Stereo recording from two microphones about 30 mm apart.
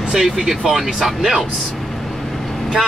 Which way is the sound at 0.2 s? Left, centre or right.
Centre.